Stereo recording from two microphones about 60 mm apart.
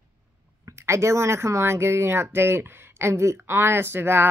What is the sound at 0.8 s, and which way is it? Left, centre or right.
Speech, right.